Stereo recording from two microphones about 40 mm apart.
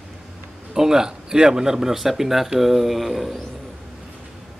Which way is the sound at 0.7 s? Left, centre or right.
Centre.